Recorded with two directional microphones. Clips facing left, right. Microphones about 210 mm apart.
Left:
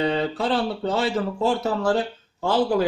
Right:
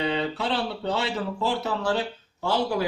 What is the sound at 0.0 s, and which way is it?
Speech, 45° left (ahead or behind).